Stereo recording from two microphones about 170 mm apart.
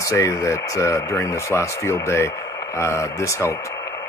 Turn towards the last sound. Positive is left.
turn(degrees=15)  # may be behind; listen again after turning